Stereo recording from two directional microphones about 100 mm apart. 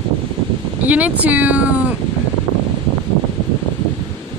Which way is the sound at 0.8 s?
15° right (ahead or behind).